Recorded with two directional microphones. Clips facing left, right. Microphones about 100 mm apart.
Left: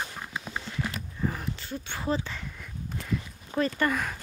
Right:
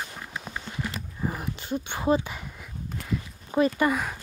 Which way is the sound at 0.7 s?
15° right (ahead or behind).